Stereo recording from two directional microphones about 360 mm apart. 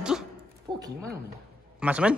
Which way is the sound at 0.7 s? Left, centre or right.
Centre.